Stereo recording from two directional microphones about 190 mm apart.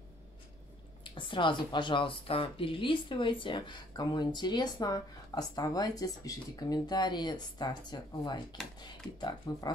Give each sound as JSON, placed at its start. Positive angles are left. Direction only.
{"t": 1.1, "sound": "speech", "side_deg": 25}